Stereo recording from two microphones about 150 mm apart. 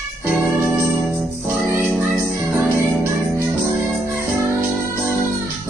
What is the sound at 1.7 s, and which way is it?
Music, 15° right (ahead or behind).